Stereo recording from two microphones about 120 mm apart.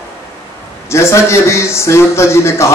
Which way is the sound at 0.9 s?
20° left (ahead or behind).